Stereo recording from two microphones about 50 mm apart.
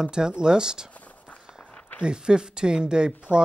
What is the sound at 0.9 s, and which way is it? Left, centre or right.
Walk, left.